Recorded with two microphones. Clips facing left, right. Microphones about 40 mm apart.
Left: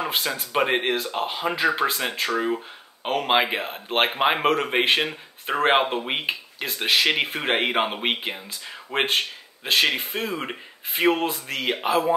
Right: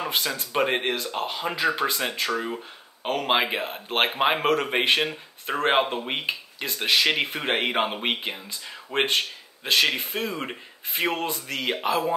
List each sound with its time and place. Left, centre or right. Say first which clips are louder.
0.1 s speech: left 2 dB; centre